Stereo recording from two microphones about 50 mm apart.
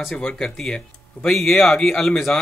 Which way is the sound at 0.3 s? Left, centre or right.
Centre.